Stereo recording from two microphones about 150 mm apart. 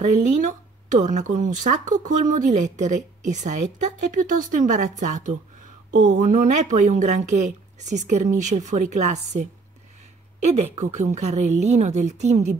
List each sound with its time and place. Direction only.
0.0 s speech: 55° right (ahead or behind)
10.5 s speech: 50° right (ahead or behind)